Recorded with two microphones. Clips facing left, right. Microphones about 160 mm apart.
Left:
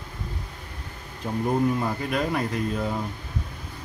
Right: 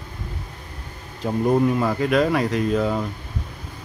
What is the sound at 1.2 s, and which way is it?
Speech, 85° right.